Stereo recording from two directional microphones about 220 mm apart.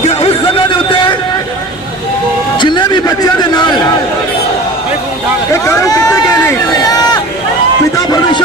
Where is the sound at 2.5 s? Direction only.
20° left (ahead or behind).